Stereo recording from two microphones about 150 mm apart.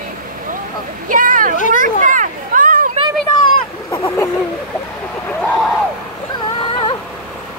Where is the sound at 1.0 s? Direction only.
65° right (ahead or behind).